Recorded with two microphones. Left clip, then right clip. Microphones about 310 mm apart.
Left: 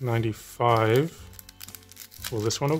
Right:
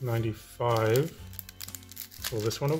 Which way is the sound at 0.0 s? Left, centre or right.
Left.